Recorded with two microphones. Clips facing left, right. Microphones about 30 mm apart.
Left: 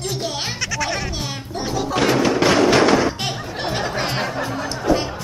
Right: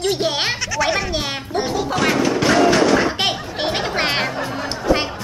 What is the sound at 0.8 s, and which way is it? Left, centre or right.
Bleat, centre.